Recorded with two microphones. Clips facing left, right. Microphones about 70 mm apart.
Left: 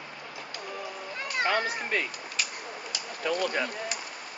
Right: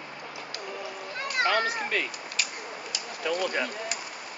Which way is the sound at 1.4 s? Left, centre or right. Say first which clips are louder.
Right 2 dB; right.